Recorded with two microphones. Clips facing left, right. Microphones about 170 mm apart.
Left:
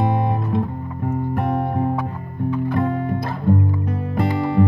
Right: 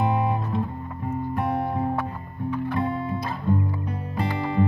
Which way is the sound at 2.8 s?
60° left (ahead or behind).